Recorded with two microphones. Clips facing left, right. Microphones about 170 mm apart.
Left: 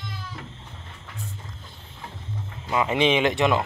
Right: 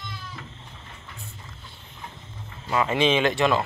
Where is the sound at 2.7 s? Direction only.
15° left (ahead or behind).